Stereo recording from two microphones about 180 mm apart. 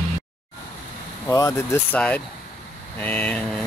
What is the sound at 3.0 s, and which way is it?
Speech, 5° left (ahead or behind).